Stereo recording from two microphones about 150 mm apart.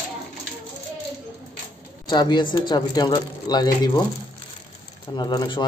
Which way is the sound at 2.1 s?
30° left (ahead or behind).